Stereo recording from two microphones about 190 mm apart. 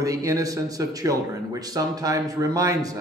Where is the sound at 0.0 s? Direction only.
20° right (ahead or behind).